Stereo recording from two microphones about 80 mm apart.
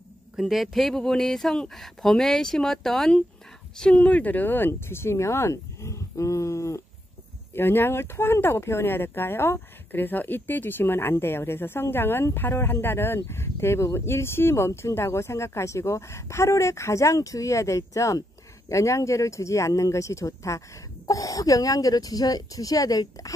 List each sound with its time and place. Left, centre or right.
0.4 s speech: centre; by 6.8 s left
7.5 s speech: left